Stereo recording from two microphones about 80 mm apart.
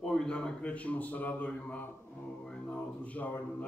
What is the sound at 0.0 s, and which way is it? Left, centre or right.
A man's voice, centre.